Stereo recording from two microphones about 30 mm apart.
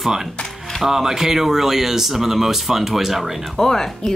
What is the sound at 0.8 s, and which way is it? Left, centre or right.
Speech, centre.